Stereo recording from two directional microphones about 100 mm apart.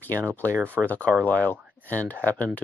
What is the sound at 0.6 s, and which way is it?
Speech, 20° right (ahead or behind).